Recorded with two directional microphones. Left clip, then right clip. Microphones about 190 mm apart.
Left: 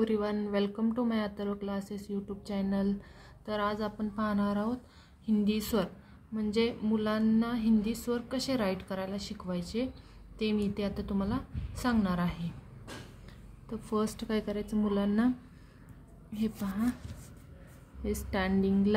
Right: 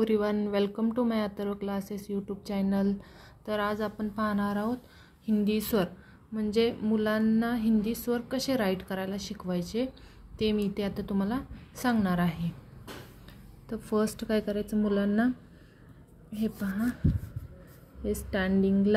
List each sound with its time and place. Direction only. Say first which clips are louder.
0.0 s a woman's voice: right 4 dB; 30° right (ahead or behind)
13.7 s speech: right 4 dB; 20° right (ahead or behind)
16.3 s speech: right 2 dB; 15° right (ahead or behind)
18.0 s speech: right 2 dB; 10° right (ahead or behind)